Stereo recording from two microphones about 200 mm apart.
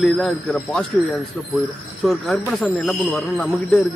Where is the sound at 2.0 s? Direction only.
Centre (ahead or behind).